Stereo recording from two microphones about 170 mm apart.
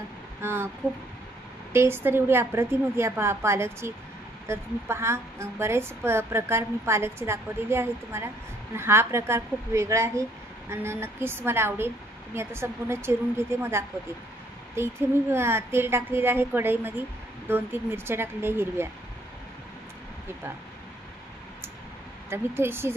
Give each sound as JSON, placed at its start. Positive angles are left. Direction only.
{"t": 0.4, "sound": "speech", "side_deg": -15}
{"t": 1.7, "sound": "a woman's voice", "side_deg": -15}
{"t": 22.3, "sound": "a woman's voice", "side_deg": -15}